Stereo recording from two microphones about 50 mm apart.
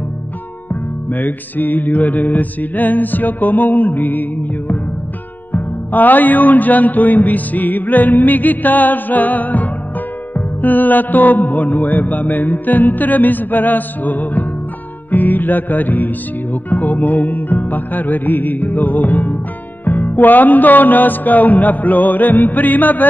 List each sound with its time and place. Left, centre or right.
1.1 s music: left